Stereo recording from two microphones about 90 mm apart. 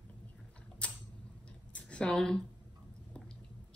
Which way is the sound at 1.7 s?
10° left (ahead or behind).